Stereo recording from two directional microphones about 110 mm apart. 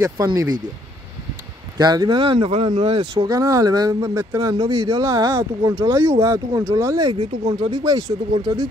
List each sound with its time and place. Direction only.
0.0 s speech: 25° right (ahead or behind)
1.8 s speech: 40° right (ahead or behind); by 3.3 s 55° right (ahead or behind)
3.3 s speech: 30° right (ahead or behind)
7.2 s speech: 60° right (ahead or behind)
7.8 s speech: 40° right (ahead or behind)